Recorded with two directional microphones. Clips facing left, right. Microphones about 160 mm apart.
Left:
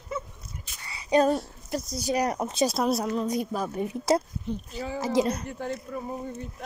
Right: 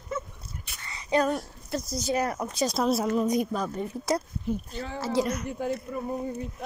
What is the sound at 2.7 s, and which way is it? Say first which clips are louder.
Speech: right 1 dB; centre (ahead or behind).